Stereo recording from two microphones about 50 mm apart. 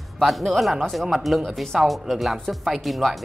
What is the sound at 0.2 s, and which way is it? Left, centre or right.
Speech, centre.